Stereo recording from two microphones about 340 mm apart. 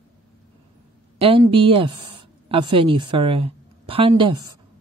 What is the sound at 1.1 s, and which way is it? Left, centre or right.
A woman's voice, centre.